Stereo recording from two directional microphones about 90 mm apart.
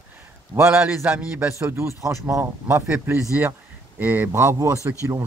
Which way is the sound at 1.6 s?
30° right (ahead or behind).